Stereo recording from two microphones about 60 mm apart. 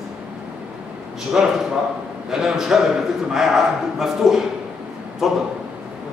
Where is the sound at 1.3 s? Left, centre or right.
Centre.